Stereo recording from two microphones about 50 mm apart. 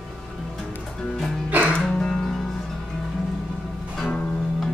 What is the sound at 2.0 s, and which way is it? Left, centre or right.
Music, centre.